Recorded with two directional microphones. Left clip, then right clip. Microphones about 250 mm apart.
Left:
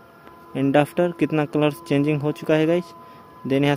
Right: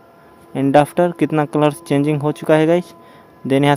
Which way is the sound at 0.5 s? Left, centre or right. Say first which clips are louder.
Right 6 dB; centre.